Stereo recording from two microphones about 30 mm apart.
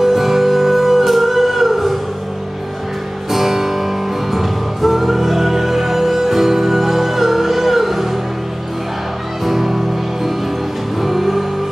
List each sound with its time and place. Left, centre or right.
0.0 s music: centre
3.3 s music: centre
9.4 s music: centre
11.0 s music: centre